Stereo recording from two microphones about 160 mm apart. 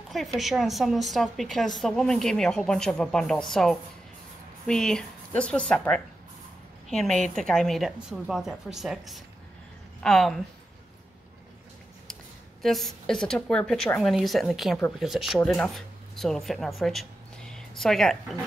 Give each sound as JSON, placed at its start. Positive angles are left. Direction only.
{"t": 0.1, "sound": "a woman's voice", "side_deg": 0}
{"t": 12.6, "sound": "a woman's voice", "side_deg": 0}